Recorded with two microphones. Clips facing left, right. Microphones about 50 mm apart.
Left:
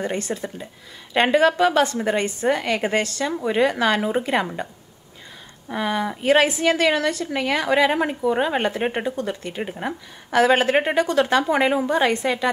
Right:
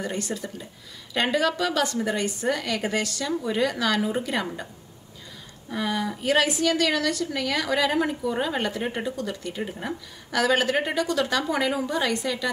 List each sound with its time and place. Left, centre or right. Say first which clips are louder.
0.0 s a woman's voice: left 4 dB; left
5.7 s a woman's voice: left 4 dB; left